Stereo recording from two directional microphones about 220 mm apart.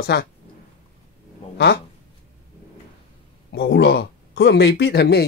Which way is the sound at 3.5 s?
50° left (ahead or behind).